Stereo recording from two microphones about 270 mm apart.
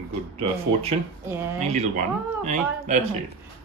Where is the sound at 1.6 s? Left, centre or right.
Right.